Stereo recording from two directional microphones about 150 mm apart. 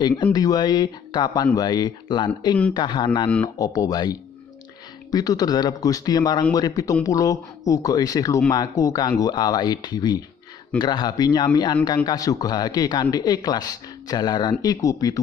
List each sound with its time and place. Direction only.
0.2 s a man's voice: 25° left (ahead or behind)